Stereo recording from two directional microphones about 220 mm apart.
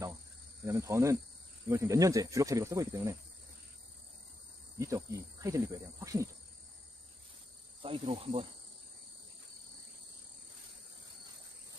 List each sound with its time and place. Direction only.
0.7 s speech: 15° right (ahead or behind)
4.7 s speech: 15° right (ahead or behind)
7.8 s cricket: 25° right (ahead or behind)